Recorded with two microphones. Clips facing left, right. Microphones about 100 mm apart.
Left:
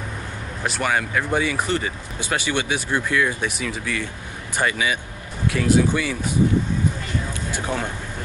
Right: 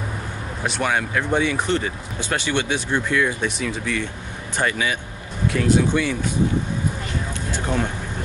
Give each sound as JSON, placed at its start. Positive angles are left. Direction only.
{"t": 0.7, "sound": "speech", "side_deg": 0}